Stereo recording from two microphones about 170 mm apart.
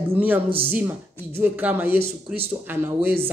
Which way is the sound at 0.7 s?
10° right (ahead or behind).